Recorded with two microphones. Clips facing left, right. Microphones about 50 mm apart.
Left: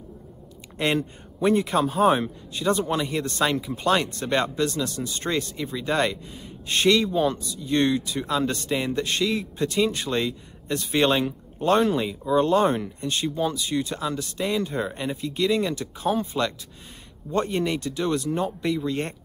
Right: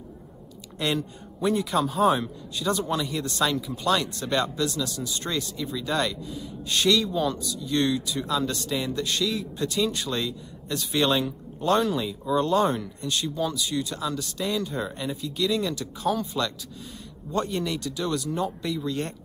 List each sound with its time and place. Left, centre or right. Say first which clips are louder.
0.7 s a man's voice: left 3 dB; left